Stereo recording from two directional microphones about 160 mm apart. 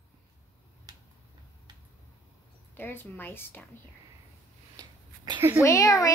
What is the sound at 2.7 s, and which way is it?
Speech, 15° left (ahead or behind).